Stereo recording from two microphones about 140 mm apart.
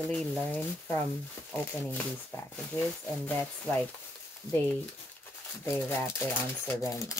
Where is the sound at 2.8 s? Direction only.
5° left (ahead or behind).